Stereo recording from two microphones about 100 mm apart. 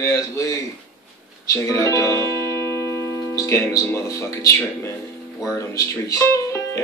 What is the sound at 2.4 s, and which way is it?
Music, 25° left (ahead or behind).